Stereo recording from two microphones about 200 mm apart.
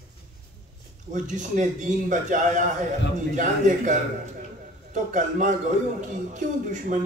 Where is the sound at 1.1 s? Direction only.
40° right (ahead or behind).